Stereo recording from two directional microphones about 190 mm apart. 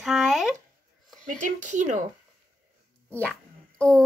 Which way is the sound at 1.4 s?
40° right (ahead or behind).